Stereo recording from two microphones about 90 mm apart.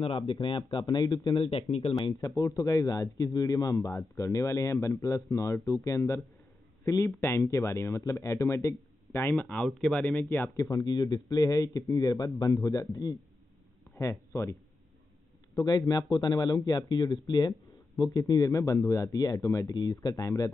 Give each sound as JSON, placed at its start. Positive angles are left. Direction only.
{"t": 0.0, "sound": "speech", "side_deg": 90}
{"t": 1.3, "sound": "speech", "side_deg": 80}
{"t": 2.3, "sound": "speech", "side_deg": 40}
{"t": 9.2, "sound": "speech", "side_deg": 20}
{"t": 10.5, "sound": "speech", "side_deg": 40}
{"t": 13.9, "sound": "speech", "side_deg": 35}
{"t": 15.5, "sound": "speech", "side_deg": 45}
{"t": 19.7, "sound": "speech", "side_deg": 50}